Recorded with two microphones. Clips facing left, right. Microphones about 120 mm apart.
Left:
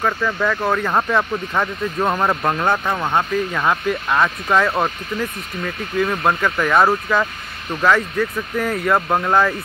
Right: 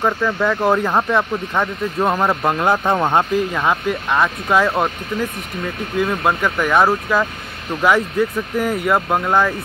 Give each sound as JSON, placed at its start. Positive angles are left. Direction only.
{"t": 0.2, "sound": "speech", "side_deg": -5}
{"t": 0.6, "sound": "speech", "side_deg": -20}
{"t": 0.8, "sound": "speech", "side_deg": -5}
{"t": 2.8, "sound": "speech", "side_deg": -25}
{"t": 3.5, "sound": "speech", "side_deg": -5}
{"t": 5.9, "sound": "speech", "side_deg": -5}
{"t": 7.8, "sound": "speech", "side_deg": -10}